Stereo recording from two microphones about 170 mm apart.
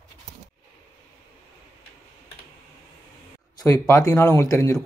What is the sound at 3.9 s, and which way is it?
Speech, 20° left (ahead or behind).